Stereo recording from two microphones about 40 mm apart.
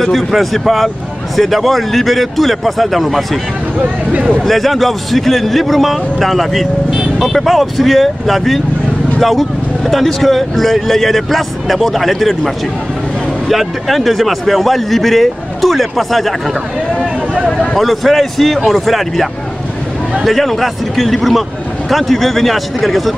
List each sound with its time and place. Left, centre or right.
0.0 s speech: centre
3.8 s speech: right
4.4 s speech: centre
13.5 s speech: centre
17.6 s speech: centre
20.2 s speech: centre